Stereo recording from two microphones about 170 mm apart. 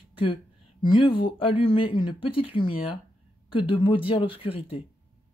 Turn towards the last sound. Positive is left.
turn(degrees=35)  # may be behind; listen again after turning